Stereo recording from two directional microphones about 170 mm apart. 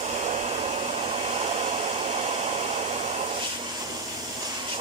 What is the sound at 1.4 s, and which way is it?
Hair dryer, 35° right (ahead or behind).